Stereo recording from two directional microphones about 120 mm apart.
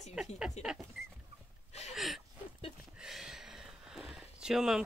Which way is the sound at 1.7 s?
65° left (ahead or behind).